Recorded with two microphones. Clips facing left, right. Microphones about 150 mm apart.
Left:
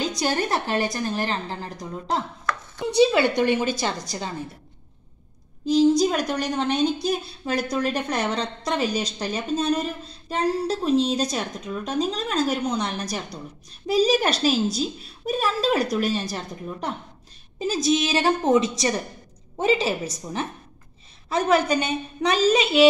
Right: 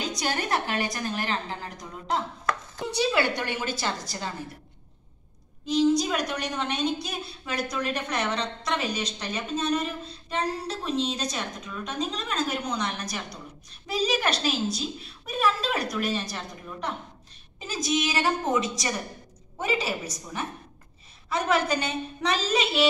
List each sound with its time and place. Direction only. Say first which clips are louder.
0.2 s a woman's voice: left 3 dB; 30° left (ahead or behind)
2.9 s a woman's voice: left 7 dB; 20° left (ahead or behind)
5.7 s a woman's voice: left 5 dB; 35° left (ahead or behind)
17.8 s a woman's voice: left 4 dB; 30° left (ahead or behind)